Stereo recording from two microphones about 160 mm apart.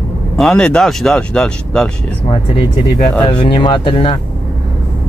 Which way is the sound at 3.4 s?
30° left (ahead or behind).